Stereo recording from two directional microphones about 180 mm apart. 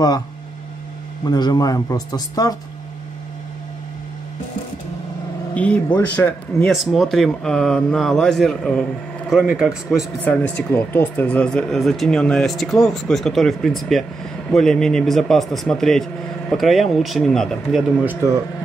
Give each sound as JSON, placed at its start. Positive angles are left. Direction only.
{"t": 1.2, "sound": "speech", "side_deg": 25}
{"t": 5.5, "sound": "speech", "side_deg": 5}
{"t": 10.2, "sound": "speech", "side_deg": 10}